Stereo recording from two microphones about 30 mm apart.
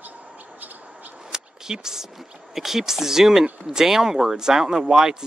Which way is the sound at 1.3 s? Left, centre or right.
Centre.